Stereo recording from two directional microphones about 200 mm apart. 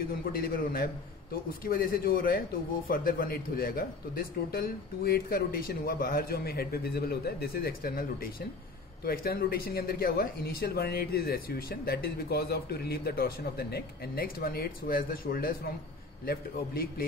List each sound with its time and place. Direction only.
0.4 s speech: 45° left (ahead or behind)